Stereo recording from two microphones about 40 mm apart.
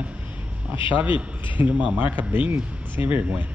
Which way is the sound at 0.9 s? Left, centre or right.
Right.